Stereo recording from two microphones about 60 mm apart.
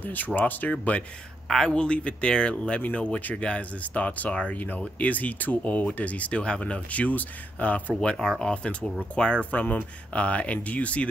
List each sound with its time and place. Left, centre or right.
0.0 s speech: left
1.5 s speech: centre